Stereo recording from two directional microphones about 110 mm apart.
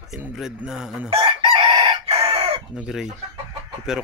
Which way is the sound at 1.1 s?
55° right (ahead or behind).